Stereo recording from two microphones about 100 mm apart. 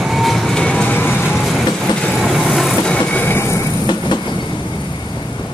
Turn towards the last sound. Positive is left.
turn(degrees=50)  # may be behind; listen again after turning